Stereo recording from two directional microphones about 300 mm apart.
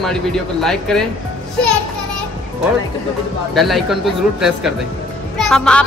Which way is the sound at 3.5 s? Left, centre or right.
Centre.